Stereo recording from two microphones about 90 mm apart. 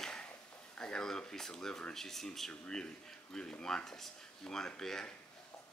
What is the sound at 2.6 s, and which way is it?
Speech, 10° left (ahead or behind).